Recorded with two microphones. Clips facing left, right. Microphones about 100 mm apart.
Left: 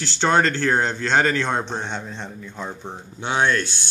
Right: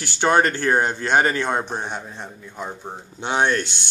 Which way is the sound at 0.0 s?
15° right (ahead or behind).